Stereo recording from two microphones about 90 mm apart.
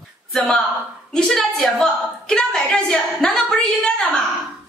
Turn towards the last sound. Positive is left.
turn(degrees=5)  # may be behind; listen again after turning